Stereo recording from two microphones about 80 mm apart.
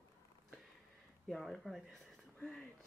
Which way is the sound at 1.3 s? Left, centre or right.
Centre.